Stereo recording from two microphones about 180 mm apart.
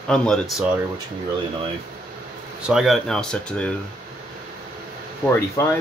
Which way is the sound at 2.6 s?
Centre (ahead or behind).